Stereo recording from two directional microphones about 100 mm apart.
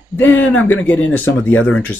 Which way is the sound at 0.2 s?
15° left (ahead or behind).